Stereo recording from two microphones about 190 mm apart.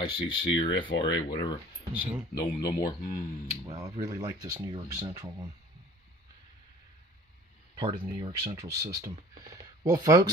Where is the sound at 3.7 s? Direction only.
20° right (ahead or behind).